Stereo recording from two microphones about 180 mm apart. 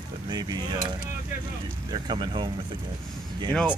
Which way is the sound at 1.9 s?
25° right (ahead or behind).